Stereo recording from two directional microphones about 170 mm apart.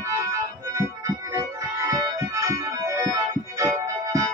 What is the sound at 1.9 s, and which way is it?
Keyboard, 20° right (ahead or behind).